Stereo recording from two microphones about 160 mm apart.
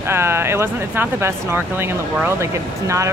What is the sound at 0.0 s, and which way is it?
Speech, 15° right (ahead or behind).